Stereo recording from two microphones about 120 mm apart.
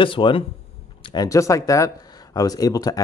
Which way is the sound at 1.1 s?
25° left (ahead or behind).